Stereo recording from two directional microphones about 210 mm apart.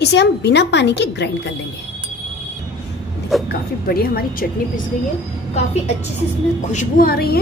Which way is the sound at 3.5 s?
45° left (ahead or behind).